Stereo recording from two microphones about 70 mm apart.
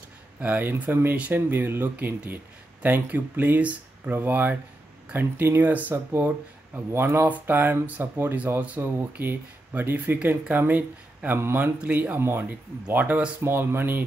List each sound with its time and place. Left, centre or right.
0.4 s speech: right
11.8 s speech: right
12.2 s speech: right
12.4 s speech: right
13.4 s speech: right